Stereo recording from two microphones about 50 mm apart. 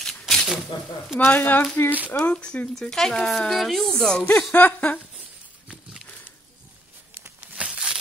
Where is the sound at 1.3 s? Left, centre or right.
Left.